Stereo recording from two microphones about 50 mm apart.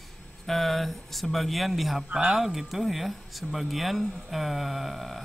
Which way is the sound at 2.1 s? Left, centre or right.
Right.